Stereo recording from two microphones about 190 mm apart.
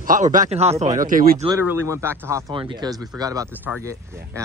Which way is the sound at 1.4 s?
15° right (ahead or behind).